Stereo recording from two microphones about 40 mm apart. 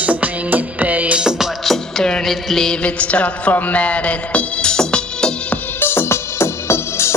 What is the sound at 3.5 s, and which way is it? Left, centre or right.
Music, left.